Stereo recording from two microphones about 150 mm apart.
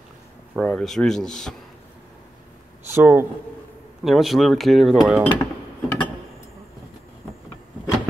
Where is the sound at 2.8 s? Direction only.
15° right (ahead or behind).